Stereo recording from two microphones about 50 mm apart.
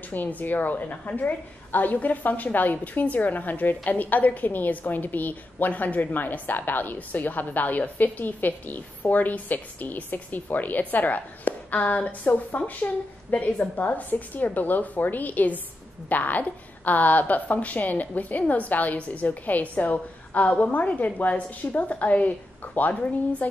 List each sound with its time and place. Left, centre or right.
0.1 s a woman's voice: left